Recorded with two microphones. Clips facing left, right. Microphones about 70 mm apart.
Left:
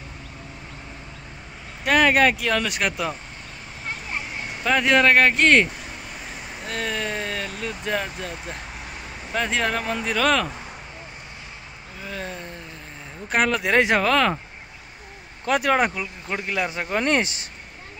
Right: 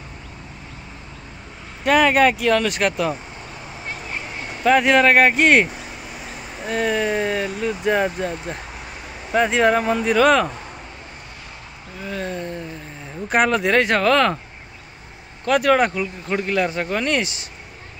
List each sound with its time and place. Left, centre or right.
1.9 s speech: centre
4.6 s a sound: centre
6.7 s speech: centre
12.0 s speech: centre
13.7 s speech: centre
15.4 s speech: centre
17.0 s speech: left